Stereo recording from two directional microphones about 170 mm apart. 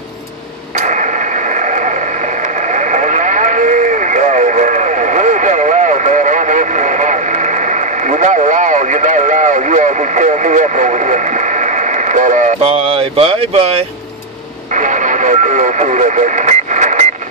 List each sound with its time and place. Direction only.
0.7 s mechanisms: 45° right (ahead or behind)
2.7 s radio: 45° right (ahead or behind)
14.8 s radio: 45° right (ahead or behind)